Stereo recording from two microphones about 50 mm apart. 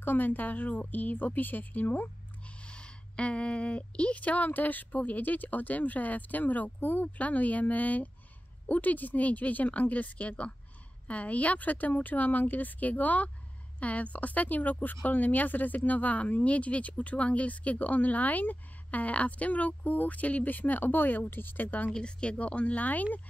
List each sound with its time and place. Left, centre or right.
0.0 s speech: left
2.4 s a sound: left
4.2 s speech: left
21.9 s speech: centre